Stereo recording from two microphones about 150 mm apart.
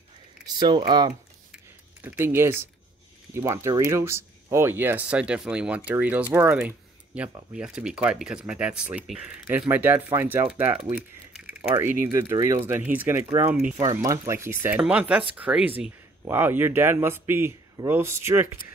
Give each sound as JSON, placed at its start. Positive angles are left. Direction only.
{"t": 0.5, "sound": "speech", "side_deg": -30}
{"t": 2.0, "sound": "speech", "side_deg": -15}
{"t": 10.9, "sound": "typing", "side_deg": -10}
{"t": 11.8, "sound": "speech", "side_deg": -15}